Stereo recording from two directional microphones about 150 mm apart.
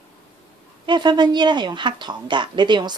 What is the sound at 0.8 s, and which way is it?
Speech, 30° right (ahead or behind).